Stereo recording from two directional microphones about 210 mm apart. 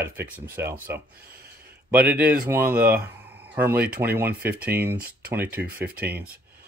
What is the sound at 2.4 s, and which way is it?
Speech, 10° right (ahead or behind).